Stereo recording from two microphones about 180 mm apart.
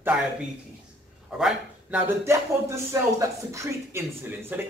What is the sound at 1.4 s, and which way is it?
Speech, 5° right (ahead or behind).